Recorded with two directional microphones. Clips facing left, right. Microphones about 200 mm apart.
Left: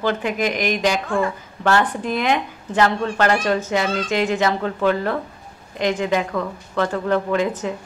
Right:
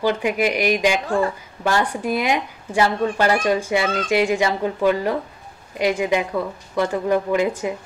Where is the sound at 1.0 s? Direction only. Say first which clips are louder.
Right 1 dB; 35° right (ahead or behind).